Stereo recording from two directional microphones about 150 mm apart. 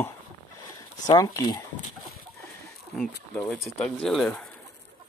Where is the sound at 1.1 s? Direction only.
25° left (ahead or behind).